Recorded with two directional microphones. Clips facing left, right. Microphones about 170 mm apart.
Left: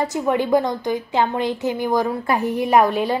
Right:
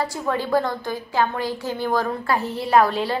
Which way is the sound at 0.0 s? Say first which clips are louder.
Left 4 dB; 20° left (ahead or behind).